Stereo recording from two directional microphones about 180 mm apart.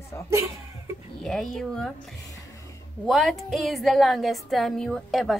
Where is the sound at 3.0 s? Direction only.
Centre (ahead or behind).